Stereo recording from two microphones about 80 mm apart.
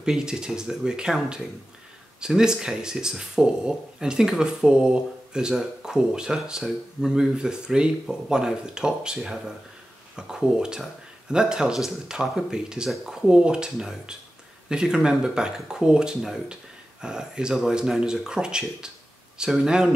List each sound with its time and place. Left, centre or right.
0.0 s speech: centre